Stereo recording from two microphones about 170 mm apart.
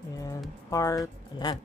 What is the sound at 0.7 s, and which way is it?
Speech, 20° left (ahead or behind).